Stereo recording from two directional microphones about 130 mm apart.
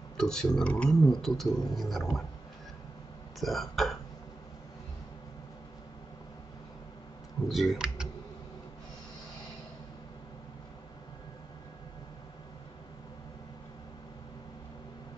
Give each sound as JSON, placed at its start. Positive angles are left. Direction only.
{"t": 0.2, "sound": "speech", "side_deg": 5}
{"t": 3.3, "sound": "speech", "side_deg": 0}
{"t": 7.4, "sound": "speech", "side_deg": 0}